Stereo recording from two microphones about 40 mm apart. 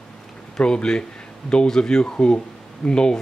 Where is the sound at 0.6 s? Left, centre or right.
Left.